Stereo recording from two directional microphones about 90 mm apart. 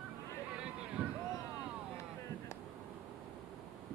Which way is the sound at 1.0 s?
15° right (ahead or behind).